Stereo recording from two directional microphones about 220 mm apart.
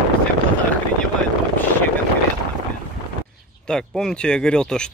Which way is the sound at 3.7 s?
5° left (ahead or behind).